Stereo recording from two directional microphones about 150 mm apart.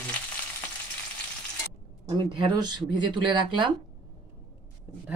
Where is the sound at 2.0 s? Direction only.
30° right (ahead or behind).